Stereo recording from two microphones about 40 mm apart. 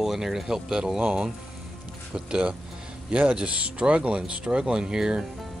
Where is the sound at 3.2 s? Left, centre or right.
Right.